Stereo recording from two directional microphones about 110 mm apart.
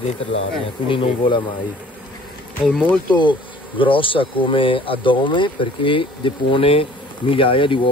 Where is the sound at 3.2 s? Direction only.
50° left (ahead or behind).